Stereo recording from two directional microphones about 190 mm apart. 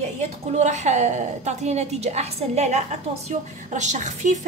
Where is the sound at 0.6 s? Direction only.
40° right (ahead or behind).